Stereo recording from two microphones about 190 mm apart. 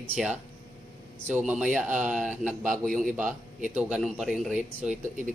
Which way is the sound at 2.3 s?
40° right (ahead or behind).